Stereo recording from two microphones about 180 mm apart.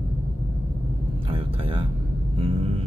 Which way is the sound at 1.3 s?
30° right (ahead or behind).